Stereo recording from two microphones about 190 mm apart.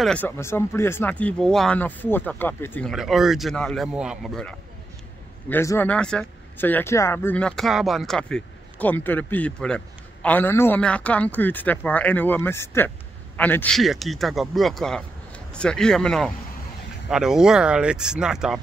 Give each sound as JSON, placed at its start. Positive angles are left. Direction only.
{"t": 0.0, "sound": "speech", "side_deg": 5}
{"t": 2.9, "sound": "speech", "side_deg": 0}